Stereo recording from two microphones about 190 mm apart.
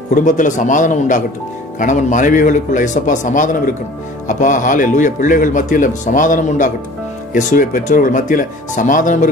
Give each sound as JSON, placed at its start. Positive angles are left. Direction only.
{"t": 0.1, "sound": "speech", "side_deg": 40}